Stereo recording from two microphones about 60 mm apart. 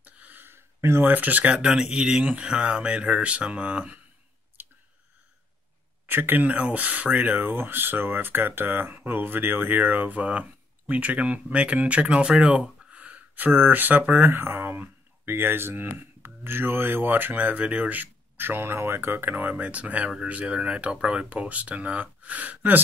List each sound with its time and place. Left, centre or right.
0.0 s a sound: right
1.0 s speech: right
6.0 s speech: right
7.4 s speech: right